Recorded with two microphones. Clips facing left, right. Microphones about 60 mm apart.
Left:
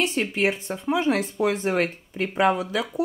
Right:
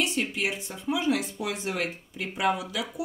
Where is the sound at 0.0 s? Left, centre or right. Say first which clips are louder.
Left 5 dB; left.